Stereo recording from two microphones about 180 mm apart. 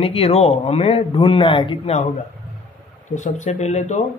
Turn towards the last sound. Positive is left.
turn(degrees=40)  # may be behind; listen again after turning